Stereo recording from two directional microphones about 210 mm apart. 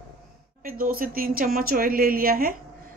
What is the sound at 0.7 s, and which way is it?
Speech, 45° right (ahead or behind).